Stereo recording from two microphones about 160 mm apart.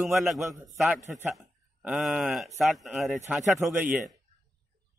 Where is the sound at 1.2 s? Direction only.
15° right (ahead or behind).